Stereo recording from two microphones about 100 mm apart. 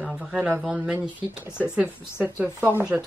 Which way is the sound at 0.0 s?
Centre (ahead or behind).